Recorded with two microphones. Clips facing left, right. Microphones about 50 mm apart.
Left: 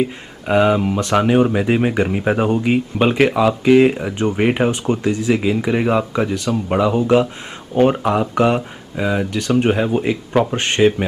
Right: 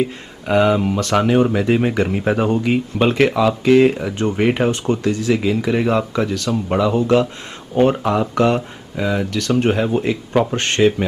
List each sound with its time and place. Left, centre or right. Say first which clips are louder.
0.0 s speech: left 1 dB; centre
10.5 s speech: left 1 dB; centre